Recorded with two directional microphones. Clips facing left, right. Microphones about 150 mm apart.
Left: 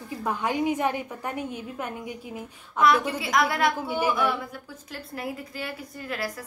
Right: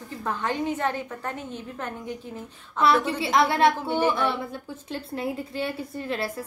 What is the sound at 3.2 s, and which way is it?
A woman's voice, 30° right (ahead or behind).